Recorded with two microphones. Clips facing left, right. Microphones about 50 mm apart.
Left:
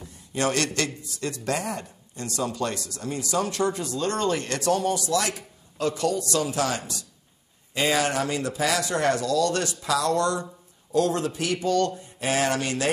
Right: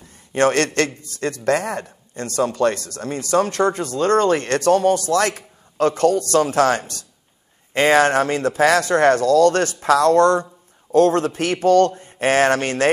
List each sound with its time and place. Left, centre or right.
0.1 s a man's voice: right